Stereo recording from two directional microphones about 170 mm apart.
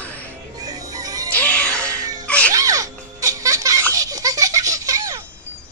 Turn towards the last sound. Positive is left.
turn(degrees=-20)  # may be behind; listen again after turning